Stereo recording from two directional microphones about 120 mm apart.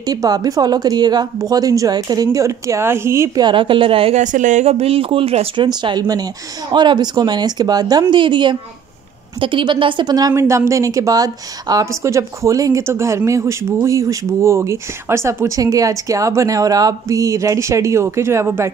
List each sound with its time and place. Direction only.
0.0 s speech: 35° right (ahead or behind)
3.3 s a woman's voice: 40° right (ahead or behind)
4.2 s speech: 90° right; by 5.7 s 55° right (ahead or behind)
5.7 s a woman's voice: 35° right (ahead or behind)